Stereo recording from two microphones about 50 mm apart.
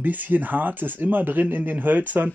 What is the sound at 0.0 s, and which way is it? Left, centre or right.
Speech, right.